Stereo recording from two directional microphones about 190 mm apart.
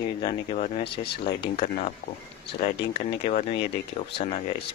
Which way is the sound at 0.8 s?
60° left (ahead or behind).